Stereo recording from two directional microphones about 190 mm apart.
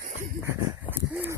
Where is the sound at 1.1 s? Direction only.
10° right (ahead or behind).